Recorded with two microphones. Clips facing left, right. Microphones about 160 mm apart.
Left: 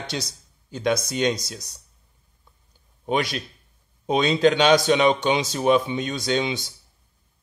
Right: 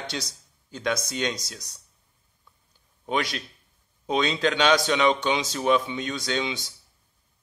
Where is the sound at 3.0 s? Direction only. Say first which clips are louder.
Left 3 dB; 15° left (ahead or behind).